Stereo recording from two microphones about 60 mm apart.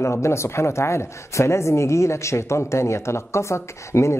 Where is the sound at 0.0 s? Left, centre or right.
Left.